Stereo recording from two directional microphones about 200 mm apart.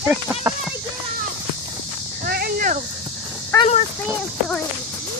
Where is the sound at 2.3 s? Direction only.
45° right (ahead or behind).